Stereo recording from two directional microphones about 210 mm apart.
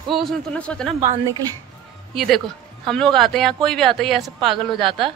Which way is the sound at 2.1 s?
Centre (ahead or behind).